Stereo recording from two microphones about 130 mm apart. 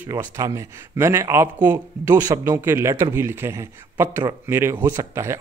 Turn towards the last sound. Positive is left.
turn(degrees=-20)  # may be behind; listen again after turning